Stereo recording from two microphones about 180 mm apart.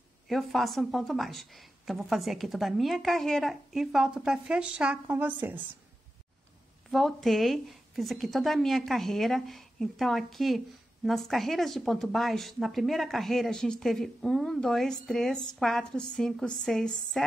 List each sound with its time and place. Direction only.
0.3 s a woman's voice: centre (ahead or behind)
6.9 s a woman's voice: centre (ahead or behind)